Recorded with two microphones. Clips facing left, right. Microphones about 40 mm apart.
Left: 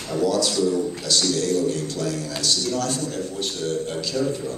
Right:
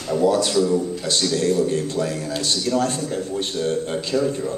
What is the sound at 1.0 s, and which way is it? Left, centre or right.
A man's voice, right.